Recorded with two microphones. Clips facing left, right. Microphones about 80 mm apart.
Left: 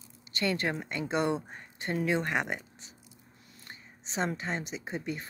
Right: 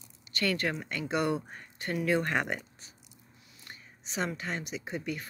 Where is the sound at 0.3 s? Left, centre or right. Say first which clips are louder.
Even; left.